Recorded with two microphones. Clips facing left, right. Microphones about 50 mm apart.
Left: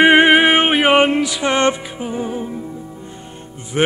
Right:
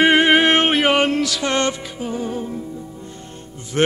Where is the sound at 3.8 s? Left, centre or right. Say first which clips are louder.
Left 1 dB; centre.